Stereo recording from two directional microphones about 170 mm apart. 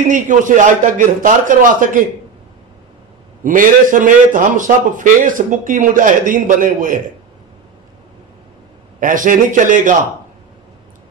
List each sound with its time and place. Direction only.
0.1 s a man's voice: 50° right (ahead or behind)
3.4 s a man's voice: 50° right (ahead or behind)
9.0 s a man's voice: 50° right (ahead or behind)